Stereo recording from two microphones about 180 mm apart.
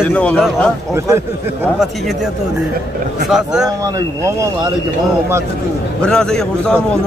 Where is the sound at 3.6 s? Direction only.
15° right (ahead or behind).